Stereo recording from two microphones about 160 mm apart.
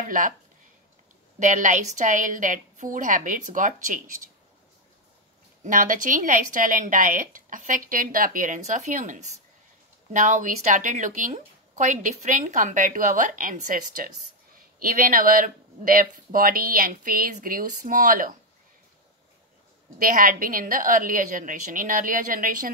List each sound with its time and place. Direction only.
1.4 s a woman's voice: 50° right (ahead or behind)
5.6 s a woman's voice: 55° right (ahead or behind)
20.0 s a woman's voice: 60° right (ahead or behind)